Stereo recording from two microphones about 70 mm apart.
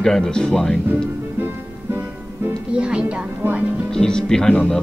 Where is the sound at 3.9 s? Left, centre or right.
Centre.